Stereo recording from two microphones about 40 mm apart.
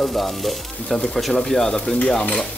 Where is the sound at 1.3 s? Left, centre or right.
Centre.